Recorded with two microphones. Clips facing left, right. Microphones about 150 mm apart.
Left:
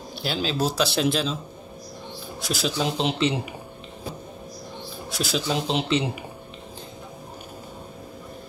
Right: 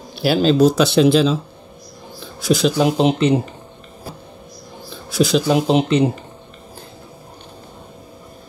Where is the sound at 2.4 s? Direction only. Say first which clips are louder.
Right 13 dB; centre (ahead or behind).